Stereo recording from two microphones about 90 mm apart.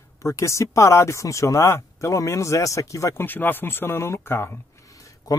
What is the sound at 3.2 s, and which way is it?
Speech, 20° left (ahead or behind).